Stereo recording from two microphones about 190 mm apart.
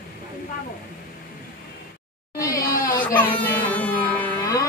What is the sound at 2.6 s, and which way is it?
Crying, 50° left (ahead or behind).